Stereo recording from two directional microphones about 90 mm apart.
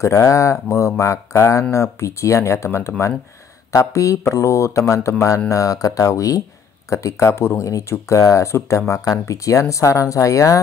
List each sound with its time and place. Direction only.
0.0 s speech: 35° left (ahead or behind)